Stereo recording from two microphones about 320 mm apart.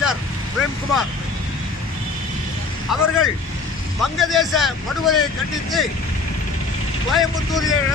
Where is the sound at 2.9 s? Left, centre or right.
Centre.